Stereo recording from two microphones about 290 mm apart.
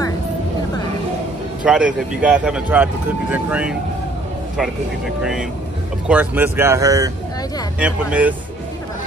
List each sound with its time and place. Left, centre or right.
1.6 s speech: centre